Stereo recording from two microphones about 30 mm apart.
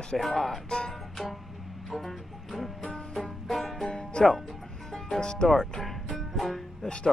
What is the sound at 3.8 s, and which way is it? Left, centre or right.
Music, left.